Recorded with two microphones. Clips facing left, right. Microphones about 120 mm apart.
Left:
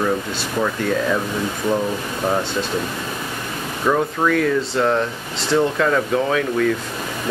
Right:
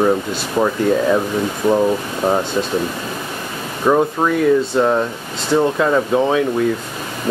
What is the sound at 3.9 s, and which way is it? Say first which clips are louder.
Speech: right 3 dB; 20° right (ahead or behind).